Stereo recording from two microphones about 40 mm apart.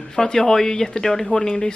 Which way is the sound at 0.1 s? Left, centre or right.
Centre.